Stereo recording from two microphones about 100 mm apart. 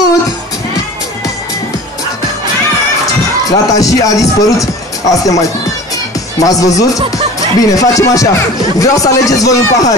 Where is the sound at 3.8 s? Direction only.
35° left (ahead or behind).